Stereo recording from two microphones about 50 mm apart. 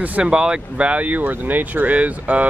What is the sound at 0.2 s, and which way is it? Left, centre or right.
Speech, centre.